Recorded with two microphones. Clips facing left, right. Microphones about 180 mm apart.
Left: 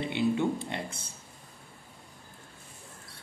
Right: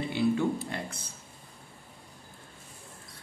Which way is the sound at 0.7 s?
25° left (ahead or behind).